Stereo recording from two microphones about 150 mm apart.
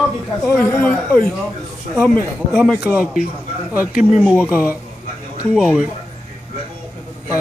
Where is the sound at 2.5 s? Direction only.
Centre (ahead or behind).